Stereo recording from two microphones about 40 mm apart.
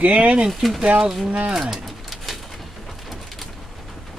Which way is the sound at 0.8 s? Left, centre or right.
Centre.